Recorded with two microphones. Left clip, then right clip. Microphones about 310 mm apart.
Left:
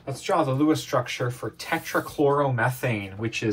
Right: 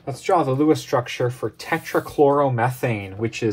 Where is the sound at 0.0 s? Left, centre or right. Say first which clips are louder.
Right 4 dB; right.